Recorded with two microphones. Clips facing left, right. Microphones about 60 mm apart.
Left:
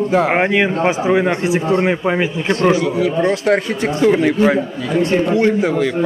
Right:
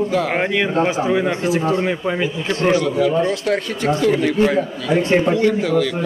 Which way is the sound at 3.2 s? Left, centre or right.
Left.